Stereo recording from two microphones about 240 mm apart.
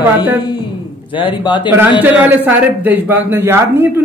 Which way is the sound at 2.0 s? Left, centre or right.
Centre.